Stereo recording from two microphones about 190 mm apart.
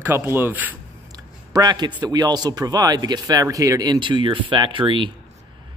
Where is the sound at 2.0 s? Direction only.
20° right (ahead or behind).